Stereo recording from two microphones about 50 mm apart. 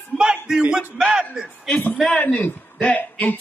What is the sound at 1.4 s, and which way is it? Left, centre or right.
Music, centre.